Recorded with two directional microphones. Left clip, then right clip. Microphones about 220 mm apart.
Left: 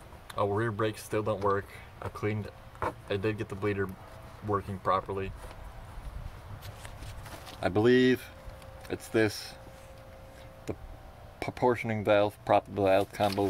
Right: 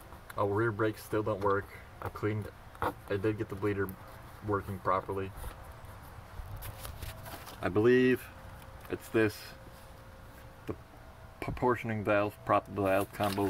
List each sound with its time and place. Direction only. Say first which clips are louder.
0.3 s speech: left 1 dB; 5° left (ahead or behind)
3.1 s speech: left 1 dB; 15° left (ahead or behind)
7.6 s speech: left 2 dB; 20° left (ahead or behind)
11.3 s speech: left 3 dB; centre (ahead or behind)